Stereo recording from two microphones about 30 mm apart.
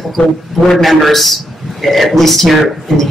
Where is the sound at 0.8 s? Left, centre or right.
Centre.